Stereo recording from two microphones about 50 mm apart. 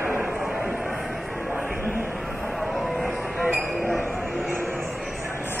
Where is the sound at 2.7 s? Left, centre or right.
Centre.